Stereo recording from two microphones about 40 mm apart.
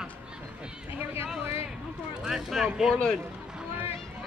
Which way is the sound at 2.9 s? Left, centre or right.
Centre.